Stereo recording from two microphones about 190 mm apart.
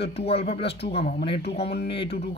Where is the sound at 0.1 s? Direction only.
30° left (ahead or behind).